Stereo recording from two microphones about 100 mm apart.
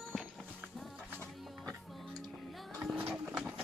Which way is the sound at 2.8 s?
20° right (ahead or behind).